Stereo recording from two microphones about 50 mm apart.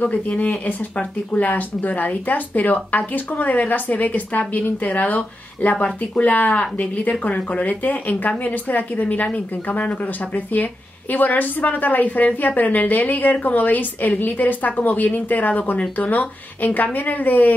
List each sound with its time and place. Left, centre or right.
0.0 s speech: left